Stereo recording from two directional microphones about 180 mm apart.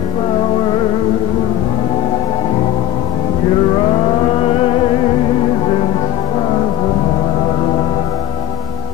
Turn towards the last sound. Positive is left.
turn(degrees=30)  # may be behind; listen again after turning